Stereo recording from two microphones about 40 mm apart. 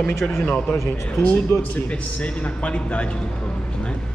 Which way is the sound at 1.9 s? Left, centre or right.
Left.